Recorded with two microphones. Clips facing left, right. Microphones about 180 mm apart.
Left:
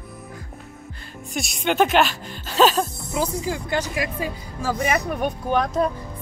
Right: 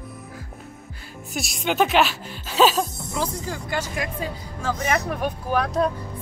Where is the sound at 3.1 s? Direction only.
10° left (ahead or behind).